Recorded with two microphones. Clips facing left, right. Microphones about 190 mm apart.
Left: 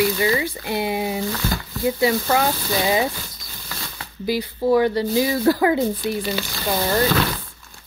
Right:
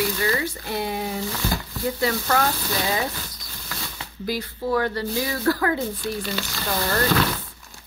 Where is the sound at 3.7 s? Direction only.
5° left (ahead or behind).